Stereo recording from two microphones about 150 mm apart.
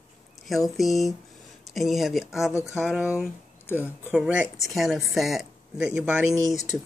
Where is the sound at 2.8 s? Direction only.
5° right (ahead or behind).